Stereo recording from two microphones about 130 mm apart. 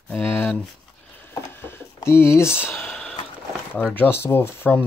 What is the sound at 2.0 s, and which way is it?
Speech, 20° left (ahead or behind).